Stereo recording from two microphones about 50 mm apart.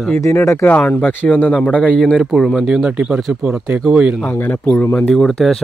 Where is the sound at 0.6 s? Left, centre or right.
Left.